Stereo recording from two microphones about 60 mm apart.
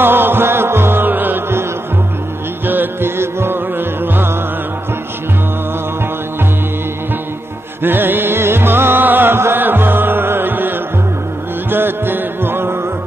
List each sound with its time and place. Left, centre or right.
0.0 s music: right
7.8 s music: right
11.7 s music: right